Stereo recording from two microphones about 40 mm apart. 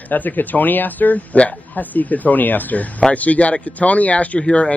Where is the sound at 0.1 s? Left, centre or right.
Left.